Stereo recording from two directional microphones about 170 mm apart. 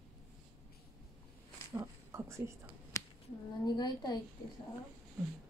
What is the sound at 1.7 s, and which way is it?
Speech, 15° right (ahead or behind).